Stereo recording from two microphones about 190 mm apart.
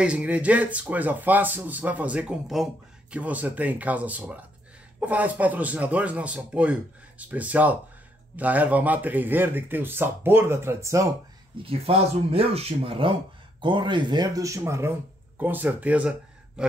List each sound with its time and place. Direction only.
0.0 s a man's voice: 5° right (ahead or behind)
11.6 s speech: 30° right (ahead or behind); by 16.6 s 5° right (ahead or behind)